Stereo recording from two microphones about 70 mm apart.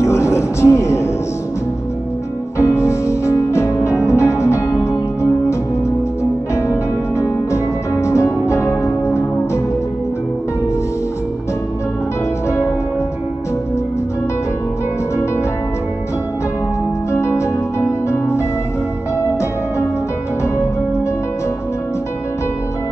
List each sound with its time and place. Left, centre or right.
0.0 s music: left
2.6 s music: left
6.5 s music: left
17.7 s harp: left